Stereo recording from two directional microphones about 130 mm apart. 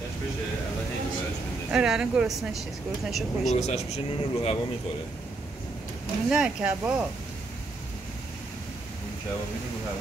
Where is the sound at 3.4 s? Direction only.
55° left (ahead or behind).